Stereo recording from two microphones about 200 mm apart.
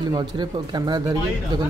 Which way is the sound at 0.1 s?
20° right (ahead or behind).